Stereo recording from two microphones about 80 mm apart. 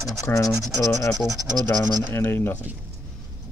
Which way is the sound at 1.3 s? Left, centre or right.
Right.